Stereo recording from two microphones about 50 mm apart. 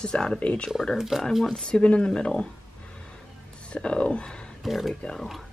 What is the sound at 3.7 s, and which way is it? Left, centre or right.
Speech, left.